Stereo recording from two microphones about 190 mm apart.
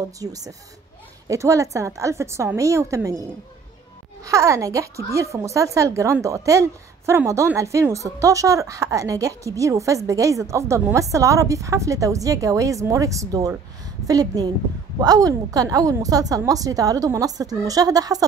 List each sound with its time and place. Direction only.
0.2 s a woman's voice: 20° right (ahead or behind)
4.3 s a woman's voice: 15° right (ahead or behind)